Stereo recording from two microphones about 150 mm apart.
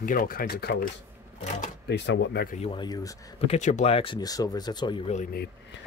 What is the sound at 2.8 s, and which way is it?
Speech, 25° left (ahead or behind).